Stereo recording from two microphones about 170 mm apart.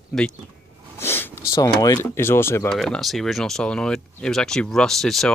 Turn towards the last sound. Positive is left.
turn(degrees=0)  # may be behind; listen again after turning